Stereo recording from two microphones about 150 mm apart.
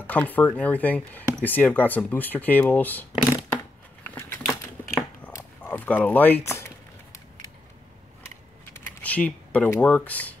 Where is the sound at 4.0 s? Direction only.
15° left (ahead or behind).